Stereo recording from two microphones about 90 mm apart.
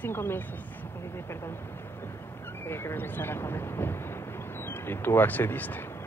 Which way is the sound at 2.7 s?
25° left (ahead or behind).